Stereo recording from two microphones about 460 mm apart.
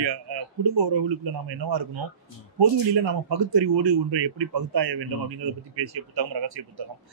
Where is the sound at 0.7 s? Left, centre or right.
Right.